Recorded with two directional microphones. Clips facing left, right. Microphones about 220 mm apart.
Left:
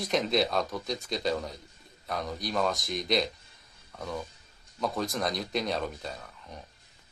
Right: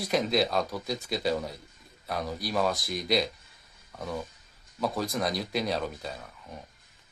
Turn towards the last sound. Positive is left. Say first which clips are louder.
# right 1 dB
turn(degrees=0)  # may be behind; listen again after turning